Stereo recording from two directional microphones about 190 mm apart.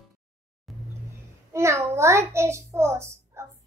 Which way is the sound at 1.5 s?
15° right (ahead or behind).